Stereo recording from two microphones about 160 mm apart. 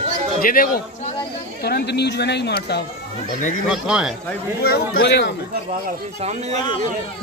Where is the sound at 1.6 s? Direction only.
90° left.